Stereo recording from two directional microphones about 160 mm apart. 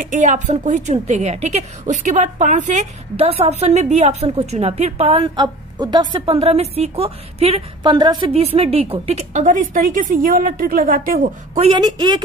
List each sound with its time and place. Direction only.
0.0 s a woman's voice: 50° right (ahead or behind); by 8.2 s 25° right (ahead or behind)
8.3 s a woman's voice: 40° right (ahead or behind); by 11.3 s 60° right (ahead or behind)
11.5 s a woman's voice: 40° right (ahead or behind)
11.8 s a woman's voice: 30° right (ahead or behind)